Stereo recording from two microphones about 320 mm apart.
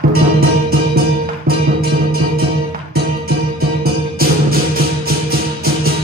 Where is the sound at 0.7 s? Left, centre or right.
Right.